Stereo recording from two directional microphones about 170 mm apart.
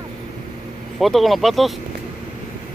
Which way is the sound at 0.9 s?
Centre (ahead or behind).